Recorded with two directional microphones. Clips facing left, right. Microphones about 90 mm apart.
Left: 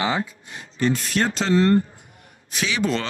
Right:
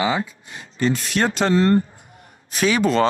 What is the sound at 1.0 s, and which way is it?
Speech, 70° right (ahead or behind).